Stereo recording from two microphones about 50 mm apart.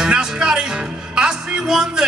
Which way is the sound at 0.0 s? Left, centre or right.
Centre.